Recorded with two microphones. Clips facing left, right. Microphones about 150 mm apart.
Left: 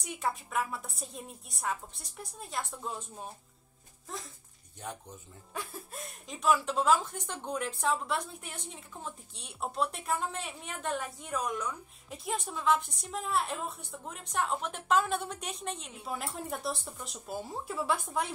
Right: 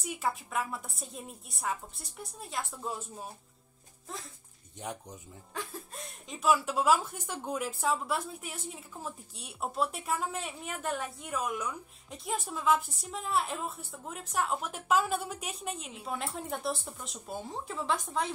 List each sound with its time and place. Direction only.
0.0 s a woman's voice: centre (ahead or behind)
4.7 s speech: 15° right (ahead or behind)
5.5 s a woman's voice: 10° left (ahead or behind)